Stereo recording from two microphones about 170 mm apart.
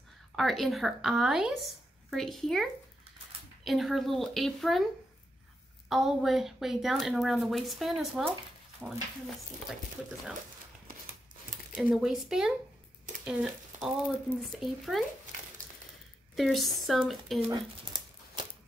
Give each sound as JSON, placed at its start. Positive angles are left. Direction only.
{"t": 0.4, "sound": "a woman's voice", "side_deg": 0}
{"t": 5.9, "sound": "a woman's voice", "side_deg": 0}
{"t": 11.7, "sound": "a woman's voice", "side_deg": -5}
{"t": 16.3, "sound": "a woman's voice", "side_deg": 0}
{"t": 17.5, "sound": "a sound", "side_deg": -25}